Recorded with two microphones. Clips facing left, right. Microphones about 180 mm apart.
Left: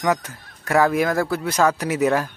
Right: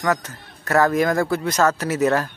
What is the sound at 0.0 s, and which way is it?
Speech, 15° left (ahead or behind).